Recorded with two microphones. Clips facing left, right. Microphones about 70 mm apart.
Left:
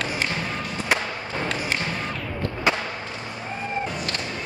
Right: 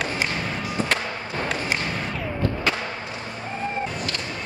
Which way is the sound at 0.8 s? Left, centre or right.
Right.